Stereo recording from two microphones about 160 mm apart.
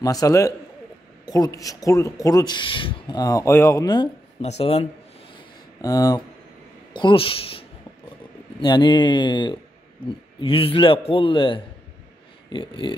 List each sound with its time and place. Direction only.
0.0 s speech: 20° left (ahead or behind)
4.4 s a man's voice: 40° left (ahead or behind)
5.8 s a man's voice: 20° left (ahead or behind)